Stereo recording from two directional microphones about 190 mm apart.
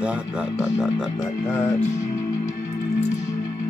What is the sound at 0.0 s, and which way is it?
Speech, 5° right (ahead or behind).